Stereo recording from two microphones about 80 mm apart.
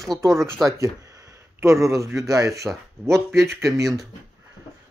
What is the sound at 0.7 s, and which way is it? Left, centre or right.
Speech, right.